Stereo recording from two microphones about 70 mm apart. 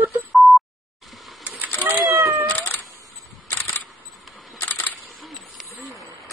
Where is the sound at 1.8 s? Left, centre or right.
Right.